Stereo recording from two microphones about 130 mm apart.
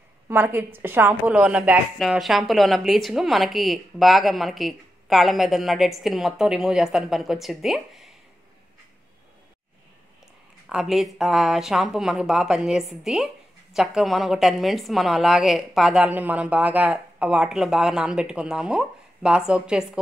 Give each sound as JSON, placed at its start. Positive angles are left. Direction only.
{"t": 0.3, "sound": "a woman's voice", "side_deg": -15}
{"t": 10.7, "sound": "a woman's voice", "side_deg": -5}